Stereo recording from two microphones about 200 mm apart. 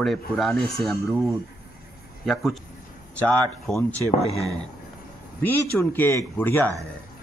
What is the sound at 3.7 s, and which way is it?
Speech, 5° left (ahead or behind).